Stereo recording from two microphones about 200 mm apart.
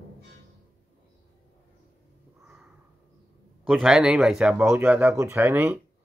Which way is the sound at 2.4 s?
Centre (ahead or behind).